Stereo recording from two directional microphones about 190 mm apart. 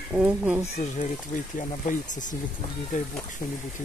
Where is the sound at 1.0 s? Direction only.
40° left (ahead or behind).